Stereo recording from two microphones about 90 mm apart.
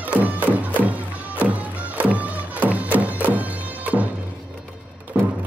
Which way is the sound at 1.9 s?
15° right (ahead or behind).